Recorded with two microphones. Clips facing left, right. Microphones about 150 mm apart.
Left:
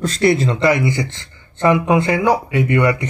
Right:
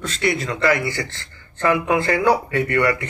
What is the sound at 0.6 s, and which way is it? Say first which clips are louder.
Speech: left 4 dB; 20° left (ahead or behind).